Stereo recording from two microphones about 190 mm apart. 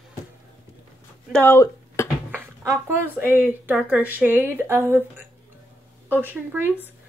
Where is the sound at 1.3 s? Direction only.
10° left (ahead or behind).